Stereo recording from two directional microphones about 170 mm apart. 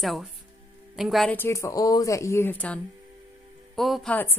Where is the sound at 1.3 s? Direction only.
15° left (ahead or behind); by 4.1 s centre (ahead or behind).